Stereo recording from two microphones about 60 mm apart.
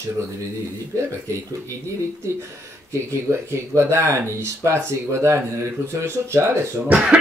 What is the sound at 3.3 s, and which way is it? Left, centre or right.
Speech, right.